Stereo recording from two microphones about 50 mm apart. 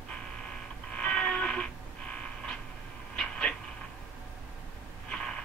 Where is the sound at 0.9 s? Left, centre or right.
Left.